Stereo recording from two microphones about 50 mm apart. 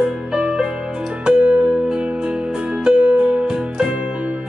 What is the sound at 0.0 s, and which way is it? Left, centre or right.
Music, centre.